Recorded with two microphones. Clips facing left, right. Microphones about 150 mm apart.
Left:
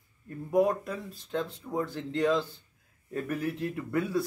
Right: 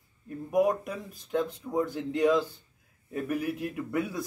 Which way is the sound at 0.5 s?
15° right (ahead or behind).